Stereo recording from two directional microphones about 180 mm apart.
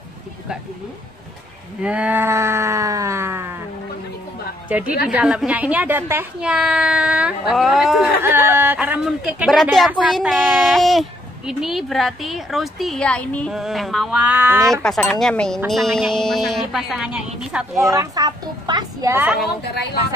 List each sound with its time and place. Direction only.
1.8 s a sound: 5° right (ahead or behind)
4.6 s a woman's voice: 5° right (ahead or behind)
8.2 s a woman's voice: 10° right (ahead or behind)
14.6 s a woman's voice: centre (ahead or behind)
17.8 s a child's voice: 20° right (ahead or behind)
19.2 s a woman's voice: 5° right (ahead or behind)
19.7 s speech: 65° left (ahead or behind)